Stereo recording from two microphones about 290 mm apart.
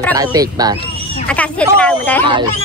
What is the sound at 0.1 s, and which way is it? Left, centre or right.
Speech, centre.